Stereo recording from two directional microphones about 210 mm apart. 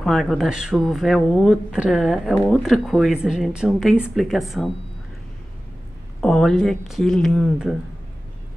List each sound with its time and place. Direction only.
0.0 s speech: centre (ahead or behind)
6.2 s speech: centre (ahead or behind)